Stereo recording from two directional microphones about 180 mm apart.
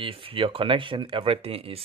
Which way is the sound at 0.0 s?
30° right (ahead or behind).